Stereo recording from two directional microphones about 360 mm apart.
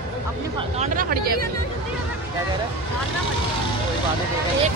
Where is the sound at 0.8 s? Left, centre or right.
Right.